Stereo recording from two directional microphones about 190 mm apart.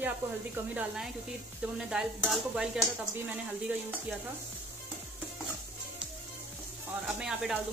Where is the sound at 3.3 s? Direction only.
10° right (ahead or behind).